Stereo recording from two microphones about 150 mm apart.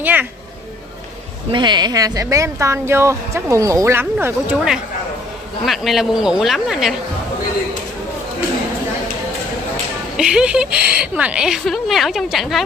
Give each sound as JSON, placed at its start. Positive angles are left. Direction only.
{"t": 0.0, "sound": "speech", "side_deg": -10}
{"t": 1.5, "sound": "speech", "side_deg": -30}
{"t": 5.7, "sound": "a woman's voice", "side_deg": 0}
{"t": 10.1, "sound": "a woman's voice", "side_deg": -5}